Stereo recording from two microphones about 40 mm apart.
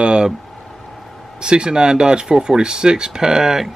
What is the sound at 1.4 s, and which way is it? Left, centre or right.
A man's voice, right.